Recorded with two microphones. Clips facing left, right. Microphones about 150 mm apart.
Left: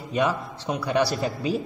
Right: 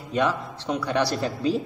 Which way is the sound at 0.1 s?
15° left (ahead or behind).